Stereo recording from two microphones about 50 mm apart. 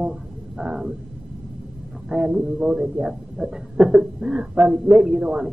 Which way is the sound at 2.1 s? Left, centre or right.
Centre.